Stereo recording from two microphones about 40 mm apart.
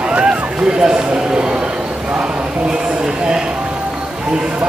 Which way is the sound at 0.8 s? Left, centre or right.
Right.